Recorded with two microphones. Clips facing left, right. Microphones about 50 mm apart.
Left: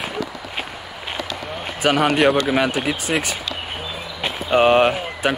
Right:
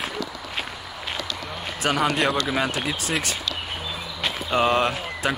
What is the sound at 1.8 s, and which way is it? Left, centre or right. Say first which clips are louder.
Speech: left 5 dB; left.